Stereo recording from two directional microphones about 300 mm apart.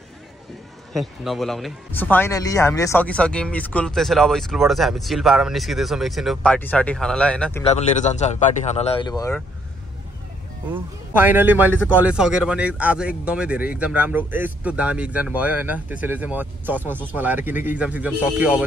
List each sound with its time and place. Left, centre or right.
0.9 s speech: centre
7.6 s speech: left
10.7 s a man's voice: centre